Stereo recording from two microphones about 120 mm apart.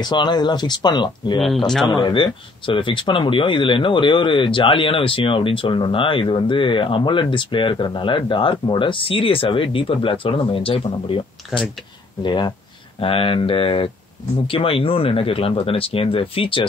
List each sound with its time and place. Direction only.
0.0 s speech: 40° left (ahead or behind)
12.2 s speech: 40° left (ahead or behind)
13.0 s speech: 50° left (ahead or behind)